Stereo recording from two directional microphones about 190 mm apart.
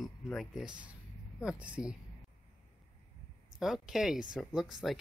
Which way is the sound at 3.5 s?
Centre (ahead or behind).